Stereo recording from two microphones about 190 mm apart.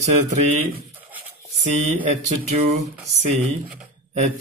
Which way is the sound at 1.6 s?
40° right (ahead or behind).